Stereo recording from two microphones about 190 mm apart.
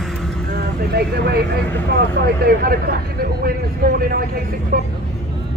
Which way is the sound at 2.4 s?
50° right (ahead or behind).